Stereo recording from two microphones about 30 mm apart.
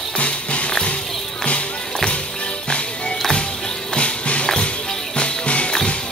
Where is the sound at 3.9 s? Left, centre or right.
Left.